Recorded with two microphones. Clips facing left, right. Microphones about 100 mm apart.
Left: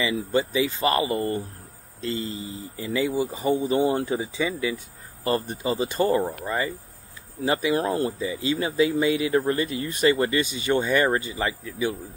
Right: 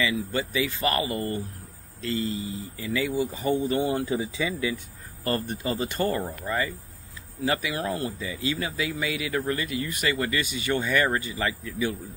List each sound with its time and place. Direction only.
0.0 s speech: 25° left (ahead or behind)